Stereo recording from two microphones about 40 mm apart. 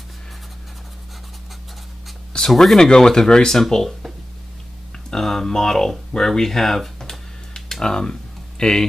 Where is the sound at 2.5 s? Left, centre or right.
Centre.